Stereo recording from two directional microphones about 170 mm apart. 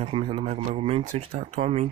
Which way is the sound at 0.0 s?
35° right (ahead or behind).